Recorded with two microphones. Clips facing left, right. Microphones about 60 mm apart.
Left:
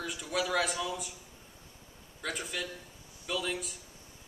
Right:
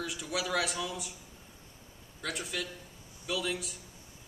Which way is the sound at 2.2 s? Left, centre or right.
Centre.